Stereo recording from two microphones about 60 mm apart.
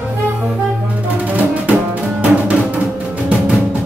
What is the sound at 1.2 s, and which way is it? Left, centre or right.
Music, right.